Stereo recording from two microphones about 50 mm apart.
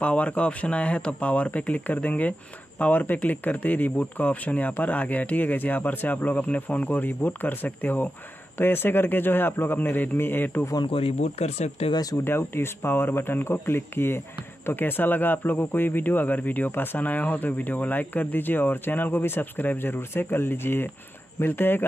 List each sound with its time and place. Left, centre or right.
0.0 s a man's voice: left
12.3 s a man's voice: left